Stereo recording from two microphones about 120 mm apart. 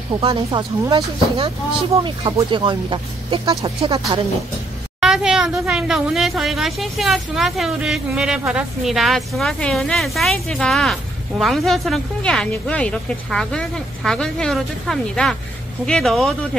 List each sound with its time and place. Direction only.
0.1 s speech: 40° right (ahead or behind)
5.0 s a woman's voice: 5° right (ahead or behind)